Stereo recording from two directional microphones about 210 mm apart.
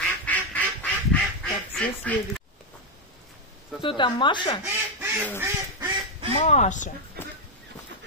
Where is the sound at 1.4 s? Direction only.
5° left (ahead or behind).